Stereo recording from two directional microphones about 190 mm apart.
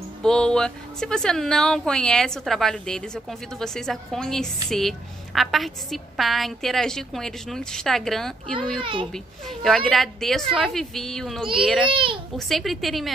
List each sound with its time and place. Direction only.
0.2 s speech: 5° left (ahead or behind)
8.5 s a child's voice: 25° right (ahead or behind)
9.1 s speech: centre (ahead or behind)
11.9 s a child's voice: 25° right (ahead or behind)
12.4 s speech: centre (ahead or behind)